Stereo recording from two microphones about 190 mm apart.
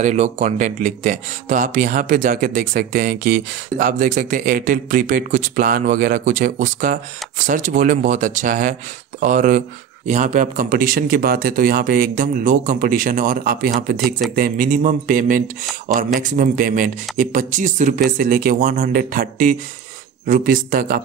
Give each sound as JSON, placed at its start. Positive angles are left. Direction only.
{"t": 0.0, "sound": "speech", "side_deg": -40}